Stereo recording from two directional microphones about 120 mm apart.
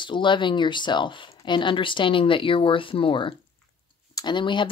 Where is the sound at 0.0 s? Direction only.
40° left (ahead or behind).